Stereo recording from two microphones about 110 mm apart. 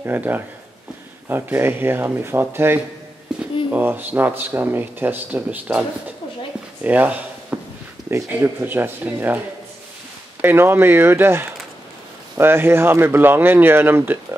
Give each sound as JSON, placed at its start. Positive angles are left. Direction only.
{"t": 0.0, "sound": "speech", "side_deg": -15}
{"t": 6.8, "sound": "drawer open or close", "side_deg": -15}
{"t": 8.1, "sound": "speech", "side_deg": -20}
{"t": 10.4, "sound": "speech", "side_deg": -20}